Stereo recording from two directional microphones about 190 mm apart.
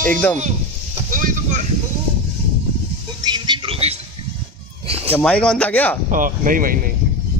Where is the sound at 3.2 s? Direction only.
25° right (ahead or behind).